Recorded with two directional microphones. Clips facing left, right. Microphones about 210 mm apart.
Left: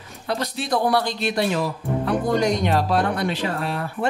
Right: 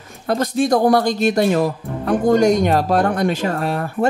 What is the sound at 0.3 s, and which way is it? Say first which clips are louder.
Speech: right 8 dB; 45° right (ahead or behind).